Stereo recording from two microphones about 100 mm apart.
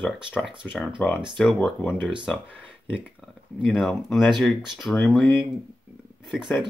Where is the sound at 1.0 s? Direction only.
15° left (ahead or behind).